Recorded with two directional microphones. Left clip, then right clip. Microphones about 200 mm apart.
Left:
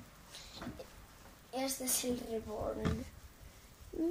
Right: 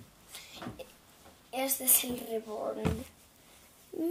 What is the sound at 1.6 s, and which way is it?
Speech, 25° right (ahead or behind).